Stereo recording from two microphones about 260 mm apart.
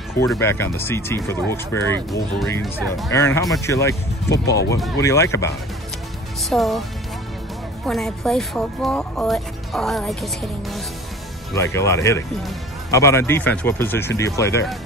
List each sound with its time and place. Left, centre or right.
0.3 s speech: centre
3.4 s speech: centre
4.3 s speech: left
4.9 s speech: centre
6.5 s speech: centre
7.8 s speech: centre
11.5 s speech: centre